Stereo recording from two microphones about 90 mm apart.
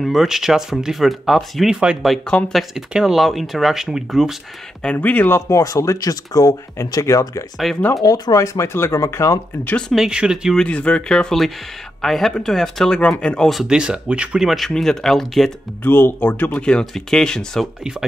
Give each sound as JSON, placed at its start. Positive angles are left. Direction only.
{"t": 0.0, "sound": "speech", "side_deg": 0}
{"t": 2.7, "sound": "speech", "side_deg": -5}
{"t": 4.8, "sound": "speech", "side_deg": 20}
{"t": 5.5, "sound": "speech", "side_deg": 35}
{"t": 9.7, "sound": "speech", "side_deg": 10}
{"t": 9.9, "sound": "speech", "side_deg": -10}
{"t": 10.5, "sound": "speech", "side_deg": 10}
{"t": 13.5, "sound": "speech", "side_deg": -5}
{"t": 15.8, "sound": "speech", "side_deg": 25}